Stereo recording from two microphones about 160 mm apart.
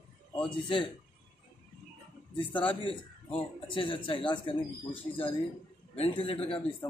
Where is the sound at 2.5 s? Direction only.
30° left (ahead or behind).